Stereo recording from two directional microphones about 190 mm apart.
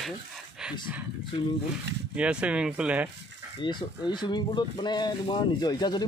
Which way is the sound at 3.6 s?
25° left (ahead or behind).